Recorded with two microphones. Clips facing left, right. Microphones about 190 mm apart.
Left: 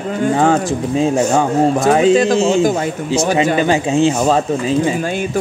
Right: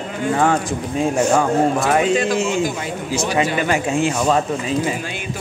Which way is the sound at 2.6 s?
45° left (ahead or behind).